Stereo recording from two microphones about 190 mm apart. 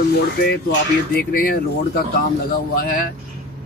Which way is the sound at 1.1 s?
50° left (ahead or behind).